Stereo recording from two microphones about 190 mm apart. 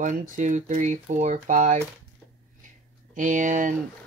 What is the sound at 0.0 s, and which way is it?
Speech, 45° right (ahead or behind).